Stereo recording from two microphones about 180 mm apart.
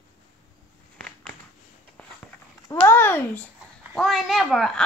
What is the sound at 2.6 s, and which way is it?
Speech, 15° left (ahead or behind).